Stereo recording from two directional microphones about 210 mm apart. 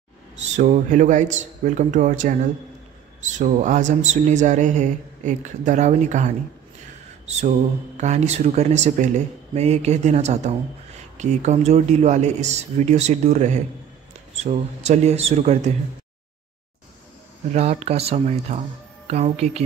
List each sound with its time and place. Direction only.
0.4 s speech: 35° right (ahead or behind)
7.2 s mantra: 30° right (ahead or behind)
8.0 s speech: 35° right (ahead or behind)
17.6 s speech: 30° right (ahead or behind)